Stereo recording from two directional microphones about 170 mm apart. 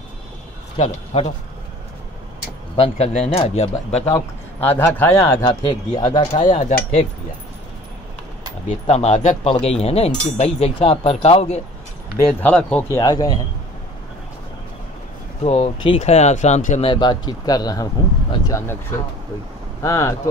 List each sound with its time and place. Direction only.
0.7 s speech: 35° left (ahead or behind)
2.7 s speech: 35° left (ahead or behind)
4.1 s a man's voice: 15° left (ahead or behind)
5.5 s speech: 25° left (ahead or behind)
6.3 s speech: 35° left (ahead or behind)
8.6 s speech: 40° left (ahead or behind)
12.4 s a man's voice: 10° left (ahead or behind)
12.9 s speech: 20° left (ahead or behind)
15.4 s speech: 35° left (ahead or behind)
16.9 s speech: 25° left (ahead or behind)
19.8 s speech: 20° left (ahead or behind)